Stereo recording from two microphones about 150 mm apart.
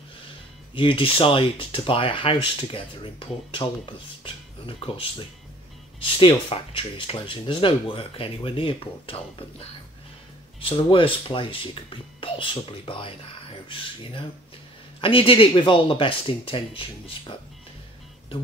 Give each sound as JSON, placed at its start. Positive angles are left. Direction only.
{"t": 0.7, "sound": "speech", "side_deg": 35}